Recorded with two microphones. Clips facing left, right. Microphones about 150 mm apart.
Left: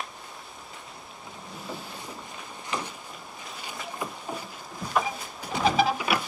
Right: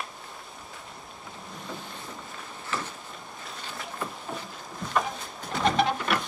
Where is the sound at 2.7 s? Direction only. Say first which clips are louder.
Left 1 dB; 15° left (ahead or behind).